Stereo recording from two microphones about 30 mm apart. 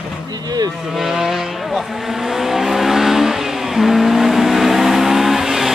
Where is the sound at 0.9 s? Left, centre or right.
Centre.